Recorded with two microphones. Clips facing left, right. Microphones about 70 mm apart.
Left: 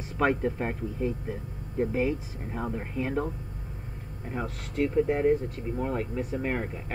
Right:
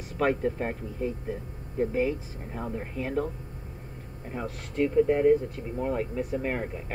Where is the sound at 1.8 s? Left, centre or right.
Left.